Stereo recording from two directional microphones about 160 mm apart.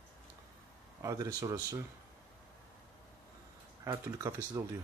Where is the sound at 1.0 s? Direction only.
20° right (ahead or behind).